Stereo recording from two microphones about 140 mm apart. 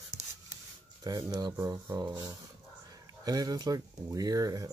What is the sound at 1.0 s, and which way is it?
Speech, 30° right (ahead or behind).